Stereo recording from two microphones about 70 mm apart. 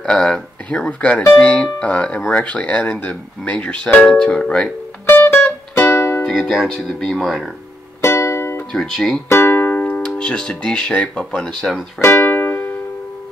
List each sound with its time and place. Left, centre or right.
0.0 s speech: centre
5.0 s music: left
6.6 s speech: centre
8.0 s music: left
8.7 s speech: centre
9.3 s music: left
9.9 s speech: centre
12.0 s music: left